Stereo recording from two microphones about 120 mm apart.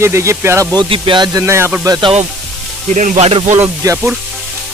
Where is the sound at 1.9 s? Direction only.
45° right (ahead or behind).